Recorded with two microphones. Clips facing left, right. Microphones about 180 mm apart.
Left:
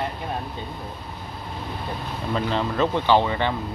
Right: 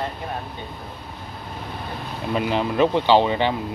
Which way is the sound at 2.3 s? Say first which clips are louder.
Right 3 dB; 15° right (ahead or behind).